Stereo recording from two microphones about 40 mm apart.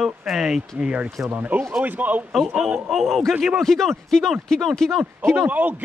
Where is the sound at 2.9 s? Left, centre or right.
Centre.